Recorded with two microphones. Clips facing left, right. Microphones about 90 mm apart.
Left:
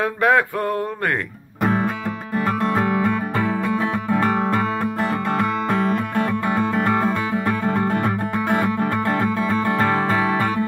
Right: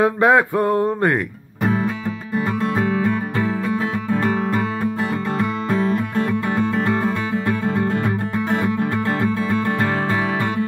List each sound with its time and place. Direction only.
0.0 s a sound: 20° right (ahead or behind)
2.6 s music: 50° left (ahead or behind)
4.1 s music: 40° left (ahead or behind)
5.9 s music: 55° left (ahead or behind)
6.7 s music: 45° left (ahead or behind)